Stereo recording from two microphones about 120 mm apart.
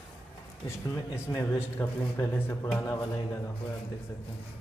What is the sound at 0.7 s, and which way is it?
Speech, 20° left (ahead or behind).